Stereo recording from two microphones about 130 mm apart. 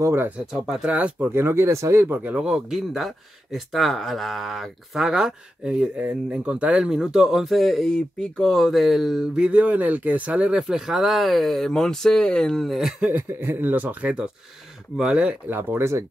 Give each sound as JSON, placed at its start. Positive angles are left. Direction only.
{"t": 0.0, "sound": "speech", "side_deg": -20}
{"t": 0.5, "sound": "speech", "side_deg": -5}